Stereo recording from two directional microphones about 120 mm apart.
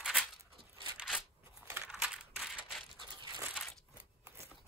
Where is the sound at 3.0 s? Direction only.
35° right (ahead or behind).